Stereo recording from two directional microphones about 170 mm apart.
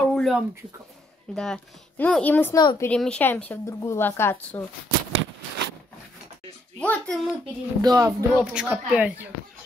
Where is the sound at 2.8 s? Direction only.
5° left (ahead or behind).